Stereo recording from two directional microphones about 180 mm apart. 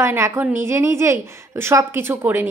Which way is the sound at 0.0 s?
15° right (ahead or behind).